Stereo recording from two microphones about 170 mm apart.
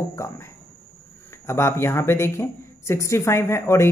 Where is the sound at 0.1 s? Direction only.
15° left (ahead or behind).